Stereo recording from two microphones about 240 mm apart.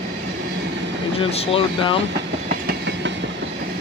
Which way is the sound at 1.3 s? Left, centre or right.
Left.